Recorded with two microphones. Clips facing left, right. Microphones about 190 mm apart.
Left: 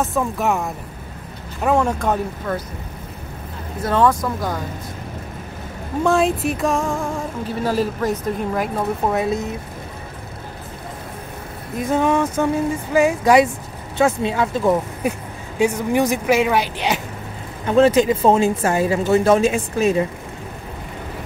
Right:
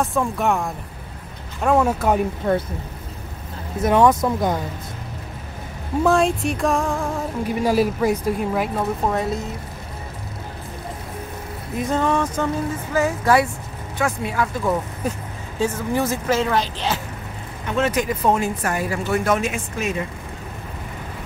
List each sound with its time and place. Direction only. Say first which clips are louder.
0.0 s music: even; centre (ahead or behind)
1.6 s speech: even; centre (ahead or behind)
2.4 s speech: right 6 dB; 25° right (ahead or behind)
3.8 s speech: right 2 dB; 15° right (ahead or behind)
6.0 s music: left 1 dB; centre (ahead or behind)
7.4 s speech: right 2 dB; 10° right (ahead or behind); by 9.3 s 5° left (ahead or behind)
11.7 s music: left 2 dB; centre (ahead or behind)
12.0 s speech: left 4 dB; 10° left (ahead or behind)
15.0 s speech: left 3 dB; 10° left (ahead or behind)
17.6 s speech: left 7 dB; 35° left (ahead or behind)